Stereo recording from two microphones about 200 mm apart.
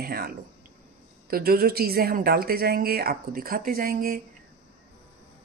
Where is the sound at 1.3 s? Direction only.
50° right (ahead or behind).